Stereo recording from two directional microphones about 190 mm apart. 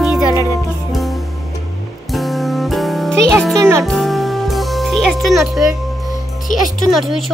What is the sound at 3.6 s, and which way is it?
Music, 15° right (ahead or behind).